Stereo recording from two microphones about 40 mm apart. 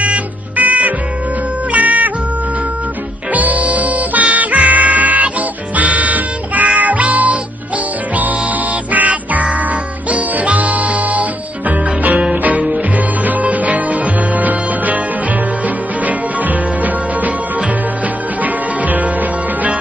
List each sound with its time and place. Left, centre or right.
0.0 s music: right
3.3 s music: right
18.4 s music: right